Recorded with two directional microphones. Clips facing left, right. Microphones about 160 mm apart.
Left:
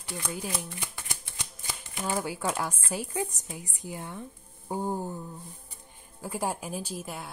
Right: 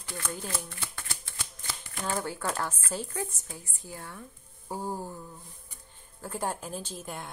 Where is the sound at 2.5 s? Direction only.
10° left (ahead or behind).